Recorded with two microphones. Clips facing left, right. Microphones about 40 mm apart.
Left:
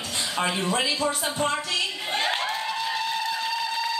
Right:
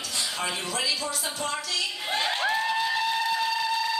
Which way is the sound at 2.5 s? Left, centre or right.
Centre.